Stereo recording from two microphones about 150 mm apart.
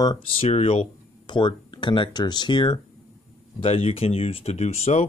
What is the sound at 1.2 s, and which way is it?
Speech, 30° left (ahead or behind).